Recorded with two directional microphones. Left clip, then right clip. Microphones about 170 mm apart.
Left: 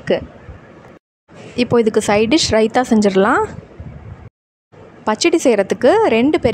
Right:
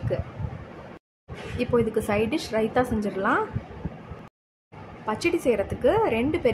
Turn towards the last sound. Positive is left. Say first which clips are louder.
# left 10 dB
turn(degrees=60)  # may be behind; listen again after turning